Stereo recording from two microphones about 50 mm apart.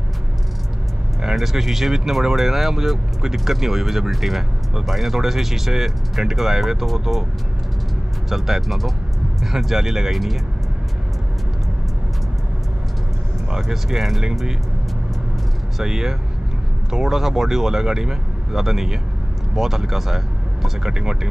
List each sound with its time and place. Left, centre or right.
1.2 s speech: centre
8.3 s speech: centre
13.5 s speech: centre
15.8 s speech: centre